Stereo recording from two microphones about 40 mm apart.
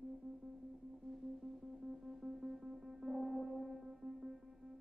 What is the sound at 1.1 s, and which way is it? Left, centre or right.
Music, centre.